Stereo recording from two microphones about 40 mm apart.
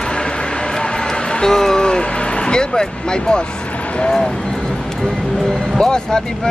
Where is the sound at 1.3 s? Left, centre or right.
Centre.